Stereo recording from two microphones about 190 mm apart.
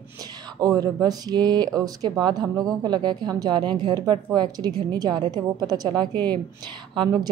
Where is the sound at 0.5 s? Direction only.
20° right (ahead or behind).